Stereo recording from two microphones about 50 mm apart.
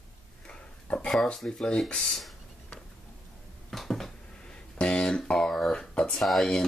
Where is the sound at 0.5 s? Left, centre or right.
Left.